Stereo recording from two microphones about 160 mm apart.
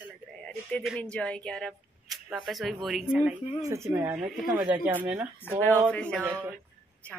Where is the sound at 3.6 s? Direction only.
20° right (ahead or behind).